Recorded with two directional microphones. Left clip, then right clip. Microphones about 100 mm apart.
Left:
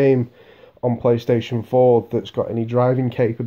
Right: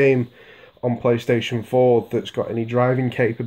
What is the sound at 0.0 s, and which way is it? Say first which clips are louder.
Speech: even; 40° left (ahead or behind).